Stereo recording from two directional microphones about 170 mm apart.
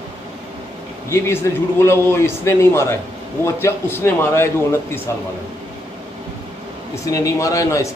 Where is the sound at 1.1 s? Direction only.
15° left (ahead or behind).